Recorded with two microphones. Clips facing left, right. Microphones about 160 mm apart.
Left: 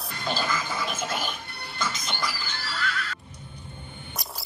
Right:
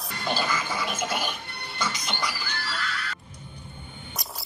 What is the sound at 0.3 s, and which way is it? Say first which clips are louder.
Music: right 1 dB; 10° right (ahead or behind).